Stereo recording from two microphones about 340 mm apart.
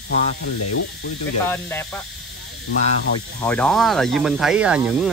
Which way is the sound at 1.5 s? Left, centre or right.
Centre.